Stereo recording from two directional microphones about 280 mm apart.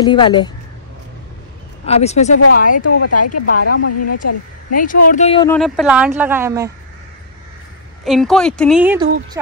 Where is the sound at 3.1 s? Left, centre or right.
Left.